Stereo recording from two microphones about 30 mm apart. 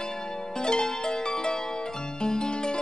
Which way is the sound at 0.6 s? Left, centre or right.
Left.